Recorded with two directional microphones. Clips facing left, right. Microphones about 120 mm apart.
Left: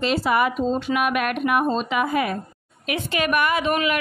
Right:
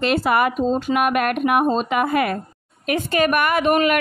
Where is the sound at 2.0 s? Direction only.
60° right (ahead or behind).